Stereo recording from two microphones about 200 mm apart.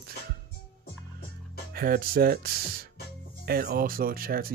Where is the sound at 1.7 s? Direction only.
45° right (ahead or behind).